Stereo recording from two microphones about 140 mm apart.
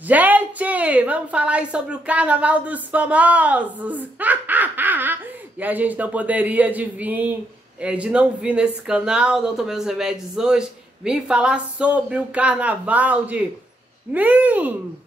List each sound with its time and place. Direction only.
0.0 s a woman's voice: 10° right (ahead or behind)